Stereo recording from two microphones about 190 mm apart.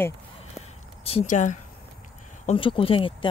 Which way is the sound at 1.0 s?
35° left (ahead or behind).